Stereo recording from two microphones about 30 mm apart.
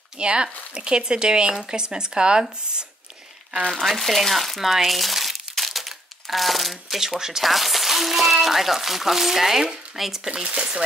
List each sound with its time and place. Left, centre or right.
0.2 s speech: right
3.8 s speech: centre
5.6 s crumpling: centre
7.0 s speech: centre
7.4 s speech: centre
10.4 s speech: right